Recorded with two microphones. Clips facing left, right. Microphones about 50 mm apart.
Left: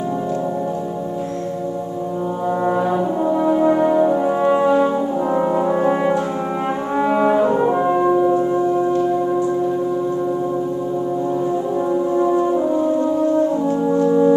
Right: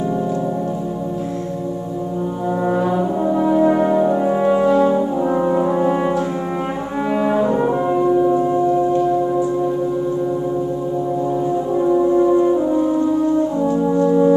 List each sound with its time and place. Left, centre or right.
2.6 s brass instrument: centre
5.5 s french horn: centre
7.1 s brass instrument: centre
8.0 s music: centre
8.3 s singing bowl: centre
11.7 s french horn: centre
14.0 s music: centre